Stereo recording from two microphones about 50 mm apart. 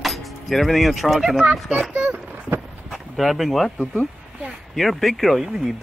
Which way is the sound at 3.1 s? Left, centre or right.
Centre.